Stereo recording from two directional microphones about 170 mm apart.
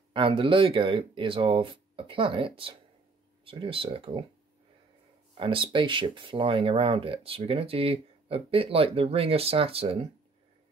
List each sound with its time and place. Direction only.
0.1 s speech: 30° right (ahead or behind)
5.4 s speech: 30° right (ahead or behind)